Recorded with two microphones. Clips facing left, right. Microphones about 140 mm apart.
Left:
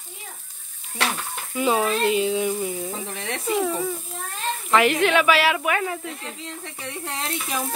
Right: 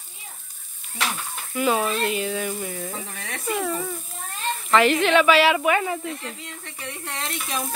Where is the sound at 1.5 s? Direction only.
20° left (ahead or behind).